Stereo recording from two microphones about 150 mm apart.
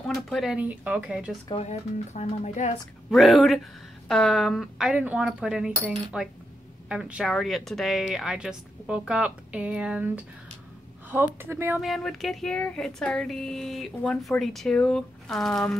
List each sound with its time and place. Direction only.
0.1 s speech: centre (ahead or behind)
1.5 s speech: 45° left (ahead or behind)
3.1 s speech: centre (ahead or behind)
11.8 s speech: centre (ahead or behind)